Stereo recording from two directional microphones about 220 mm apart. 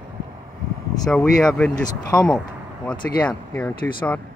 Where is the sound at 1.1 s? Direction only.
5° left (ahead or behind).